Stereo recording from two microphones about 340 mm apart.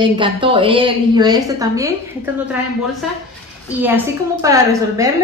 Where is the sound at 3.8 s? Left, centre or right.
Centre.